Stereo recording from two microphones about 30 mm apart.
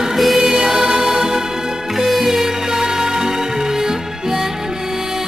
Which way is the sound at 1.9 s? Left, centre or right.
Centre.